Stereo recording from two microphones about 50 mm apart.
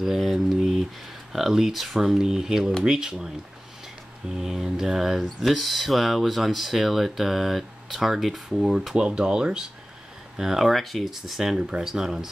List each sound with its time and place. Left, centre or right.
0.0 s speech: centre
4.4 s speech: centre
8.9 s speech: centre
10.7 s speech: centre
11.5 s speech: centre